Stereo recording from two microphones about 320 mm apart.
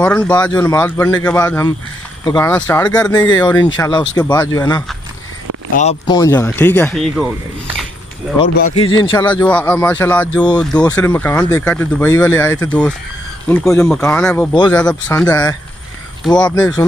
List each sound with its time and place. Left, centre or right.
0.0 s speech: centre
8.6 s speech: centre
9.1 s speech: centre
14.8 s speech: centre